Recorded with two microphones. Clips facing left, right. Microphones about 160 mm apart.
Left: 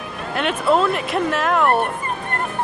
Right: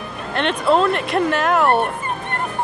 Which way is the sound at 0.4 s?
5° left (ahead or behind).